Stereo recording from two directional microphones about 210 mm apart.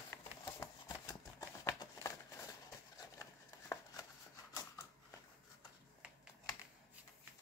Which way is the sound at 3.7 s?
15° left (ahead or behind).